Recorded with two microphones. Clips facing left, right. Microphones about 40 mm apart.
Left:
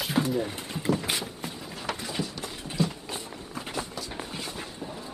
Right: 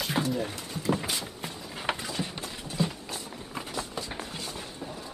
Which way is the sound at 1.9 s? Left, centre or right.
Right.